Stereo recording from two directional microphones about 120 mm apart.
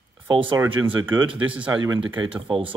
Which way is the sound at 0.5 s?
15° right (ahead or behind).